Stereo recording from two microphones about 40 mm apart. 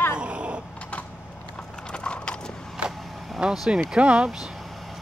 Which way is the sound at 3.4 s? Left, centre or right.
Right.